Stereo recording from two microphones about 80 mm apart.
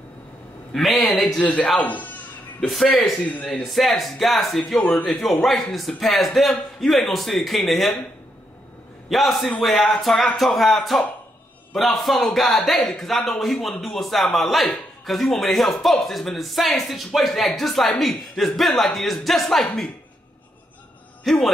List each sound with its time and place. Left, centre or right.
0.7 s a man's voice: centre
1.4 s a man's voice: centre
2.6 s a man's voice: centre
3.3 s speech: centre
3.6 s a man's voice: centre
9.1 s a man's voice: centre
21.2 s speech: centre